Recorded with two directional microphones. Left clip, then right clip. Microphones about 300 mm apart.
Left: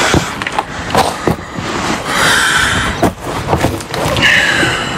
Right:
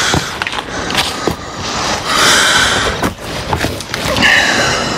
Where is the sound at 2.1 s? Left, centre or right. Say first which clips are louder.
Right 1 dB; centre.